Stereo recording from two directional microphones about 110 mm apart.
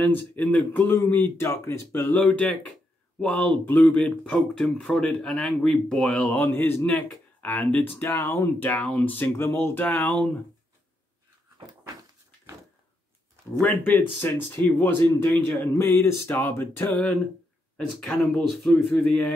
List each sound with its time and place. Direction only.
0.0 s speech: 15° left (ahead or behind)
13.6 s speech: 15° left (ahead or behind)
15.8 s music: 25° left (ahead or behind)
17.7 s speech: 5° left (ahead or behind)